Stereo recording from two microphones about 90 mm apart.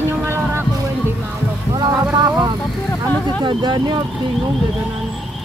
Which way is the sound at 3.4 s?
60° right (ahead or behind).